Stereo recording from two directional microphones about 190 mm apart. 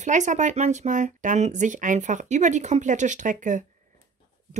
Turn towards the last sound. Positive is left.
turn(degrees=-40)  # may be behind; listen again after turning